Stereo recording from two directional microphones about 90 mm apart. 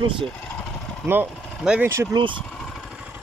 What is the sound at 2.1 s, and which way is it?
Speech, 65° right (ahead or behind).